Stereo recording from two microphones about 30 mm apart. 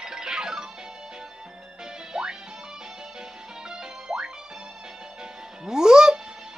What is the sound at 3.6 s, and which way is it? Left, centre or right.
Music, centre.